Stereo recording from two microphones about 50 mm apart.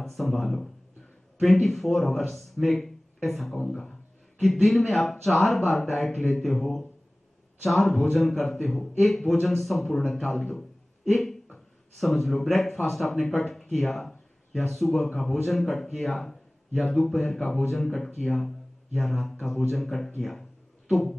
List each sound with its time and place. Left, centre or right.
0.0 s speech: centre
11.5 s speech: centre
13.4 s a sound: centre
14.7 s speech: centre